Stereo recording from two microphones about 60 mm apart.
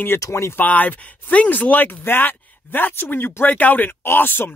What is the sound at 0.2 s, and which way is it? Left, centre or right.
Speech, left.